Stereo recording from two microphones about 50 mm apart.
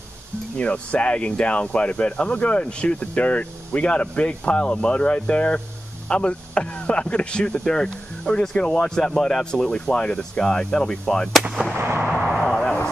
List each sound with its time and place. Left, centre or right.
0.6 s speech: left
11.8 s artillery fire: right
12.1 s a sound: centre